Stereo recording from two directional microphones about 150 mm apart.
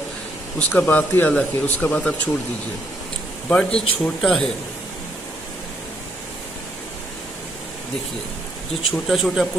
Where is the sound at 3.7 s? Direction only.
40° left (ahead or behind).